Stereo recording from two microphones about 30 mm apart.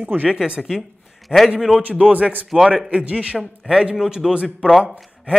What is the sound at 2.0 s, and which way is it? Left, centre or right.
Speech, right.